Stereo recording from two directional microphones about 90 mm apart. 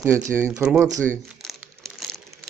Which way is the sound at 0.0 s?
30° right (ahead or behind).